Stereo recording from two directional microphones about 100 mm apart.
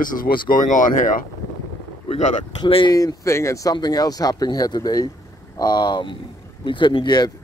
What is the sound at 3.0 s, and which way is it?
Speech, 35° left (ahead or behind).